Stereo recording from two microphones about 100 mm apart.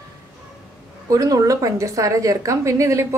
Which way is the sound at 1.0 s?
35° right (ahead or behind).